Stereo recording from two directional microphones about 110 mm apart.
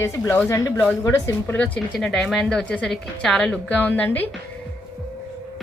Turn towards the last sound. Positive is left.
turn(degrees=15)  # may be behind; listen again after turning